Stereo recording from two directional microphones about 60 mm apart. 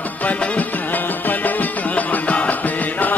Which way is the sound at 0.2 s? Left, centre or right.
Left.